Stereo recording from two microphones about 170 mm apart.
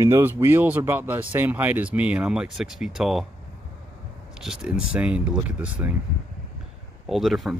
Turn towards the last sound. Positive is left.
turn(degrees=0)  # may be behind; listen again after turning